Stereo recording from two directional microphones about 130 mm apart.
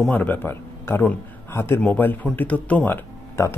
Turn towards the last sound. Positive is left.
turn(degrees=15)  # may be behind; listen again after turning